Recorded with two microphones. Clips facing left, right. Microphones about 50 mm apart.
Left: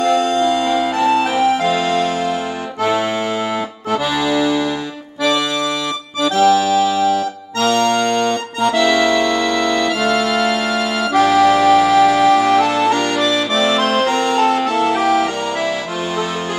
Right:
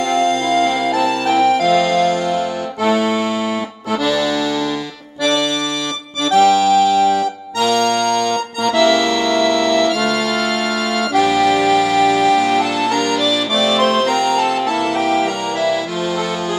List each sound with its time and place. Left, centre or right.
0.1 s music: centre
2.9 s accordion: left
3.9 s accordion: centre
6.3 s music: centre
7.5 s music: left
13.6 s music: left